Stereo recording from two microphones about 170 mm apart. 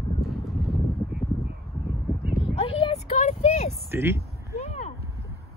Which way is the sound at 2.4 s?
35° left (ahead or behind).